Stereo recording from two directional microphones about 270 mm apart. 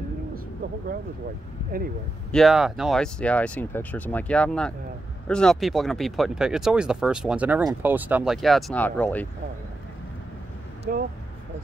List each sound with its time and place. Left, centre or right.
2.3 s speech: centre
10.9 s speech: right